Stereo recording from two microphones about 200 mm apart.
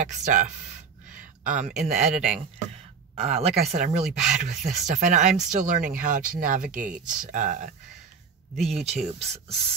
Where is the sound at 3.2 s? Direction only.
35° right (ahead or behind).